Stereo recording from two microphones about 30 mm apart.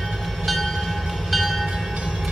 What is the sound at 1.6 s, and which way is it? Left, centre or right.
Train, centre.